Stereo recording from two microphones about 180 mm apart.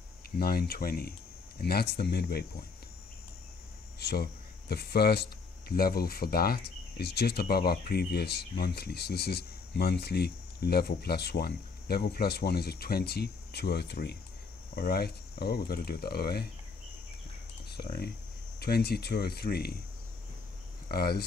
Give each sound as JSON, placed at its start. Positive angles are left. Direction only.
{"t": 0.4, "sound": "speech", "side_deg": 60}
{"t": 4.0, "sound": "speech", "side_deg": 60}
{"t": 18.6, "sound": "speech", "side_deg": 60}
{"t": 20.9, "sound": "speech", "side_deg": 60}